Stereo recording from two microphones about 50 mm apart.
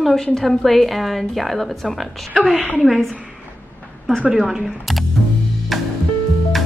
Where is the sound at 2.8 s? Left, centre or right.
Centre.